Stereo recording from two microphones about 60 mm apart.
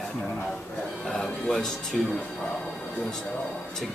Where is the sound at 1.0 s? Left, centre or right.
Centre.